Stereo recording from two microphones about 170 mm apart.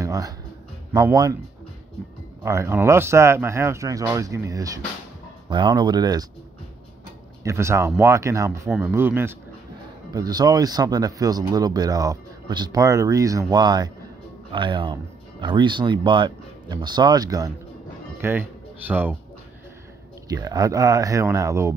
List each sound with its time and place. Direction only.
0.0 s a sound: 20° right (ahead or behind)
1.1 s speech: 20° right (ahead or behind)
2.4 s speech: 15° right (ahead or behind)
7.4 s speech: 15° right (ahead or behind)
8.6 s speech: 5° right (ahead or behind)
10.1 s speech: 25° right (ahead or behind)
20.2 s speech: 20° right (ahead or behind)